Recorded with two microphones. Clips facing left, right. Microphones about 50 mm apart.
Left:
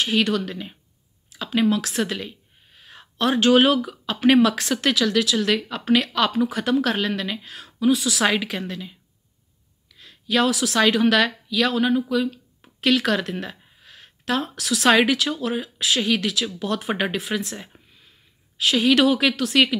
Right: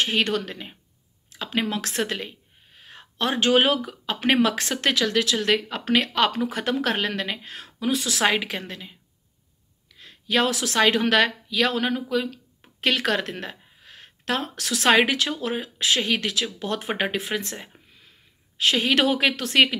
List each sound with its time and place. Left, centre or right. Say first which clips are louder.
0.0 s a woman's voice: left 2 dB; right
17.4 s speech: left 3 dB; right